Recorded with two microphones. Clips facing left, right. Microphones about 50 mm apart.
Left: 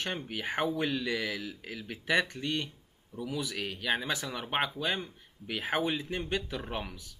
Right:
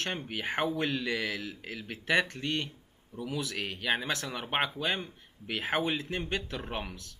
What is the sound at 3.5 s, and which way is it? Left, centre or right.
Speech, centre.